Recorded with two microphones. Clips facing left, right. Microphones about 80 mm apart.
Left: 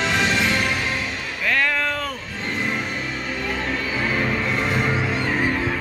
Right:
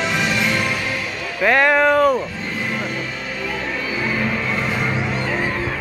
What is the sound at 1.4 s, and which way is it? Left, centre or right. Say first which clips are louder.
Music: right 8 dB; right.